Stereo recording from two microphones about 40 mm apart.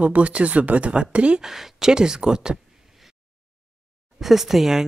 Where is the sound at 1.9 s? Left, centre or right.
Centre.